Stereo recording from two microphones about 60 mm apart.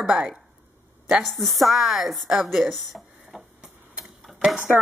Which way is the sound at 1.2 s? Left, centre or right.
Centre.